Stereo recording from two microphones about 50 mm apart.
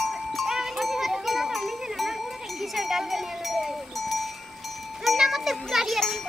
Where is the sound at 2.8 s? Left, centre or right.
Centre.